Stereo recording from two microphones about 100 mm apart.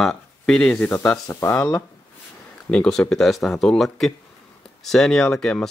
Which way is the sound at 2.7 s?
5° left (ahead or behind).